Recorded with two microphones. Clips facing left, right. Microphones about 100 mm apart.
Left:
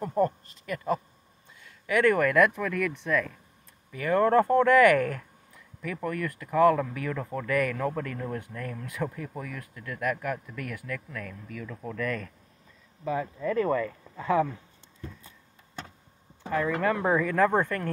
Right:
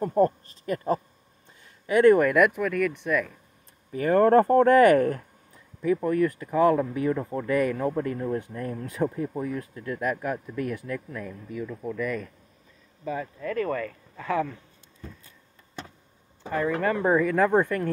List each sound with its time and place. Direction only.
0.2 s speech: 35° right (ahead or behind); by 3.3 s 5° right (ahead or behind)
3.9 s speech: 35° right (ahead or behind)
6.0 s speech: 20° right (ahead or behind)
11.7 s speech: 5° right (ahead or behind)
13.0 s speech: 5° left (ahead or behind)
13.5 s speech: 20° left (ahead or behind)
16.4 s speech: 5° right (ahead or behind)